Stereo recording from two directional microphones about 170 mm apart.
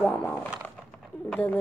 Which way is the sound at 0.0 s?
10° left (ahead or behind).